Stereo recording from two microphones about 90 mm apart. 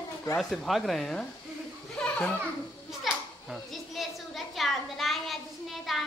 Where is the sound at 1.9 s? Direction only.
10° left (ahead or behind).